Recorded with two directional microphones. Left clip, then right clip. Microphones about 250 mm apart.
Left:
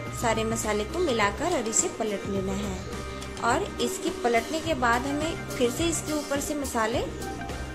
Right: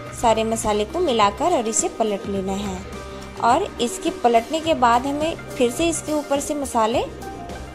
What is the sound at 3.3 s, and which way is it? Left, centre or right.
A woman's voice, centre.